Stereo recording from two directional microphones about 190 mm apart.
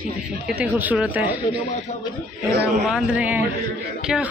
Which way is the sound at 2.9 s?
5° right (ahead or behind).